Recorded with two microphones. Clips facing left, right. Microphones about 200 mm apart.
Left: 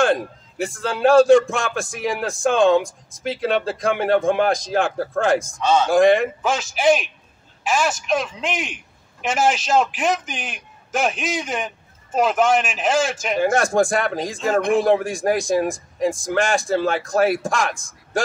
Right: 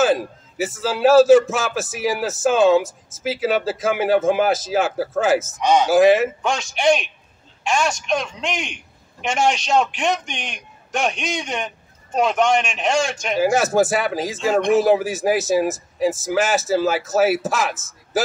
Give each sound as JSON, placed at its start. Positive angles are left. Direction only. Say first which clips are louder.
{"t": 0.0, "sound": "a man's voice", "louder": "right 1 dB", "side_deg": -5}
{"t": 5.6, "sound": "a man's voice", "louder": "right 2 dB", "side_deg": -15}
{"t": 5.9, "sound": "a man's voice", "louder": "right 1 dB", "side_deg": -5}